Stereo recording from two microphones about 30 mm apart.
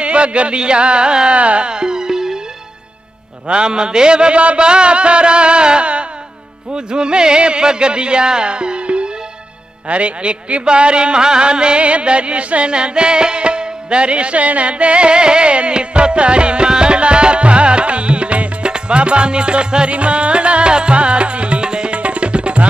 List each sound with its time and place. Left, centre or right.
0.0 s music: right
1.3 s a man's voice: right
1.7 s music: right
3.4 s music: right
9.8 s a man's voice: right
10.6 s music: right
21.6 s tabla: right
21.9 s tabla: right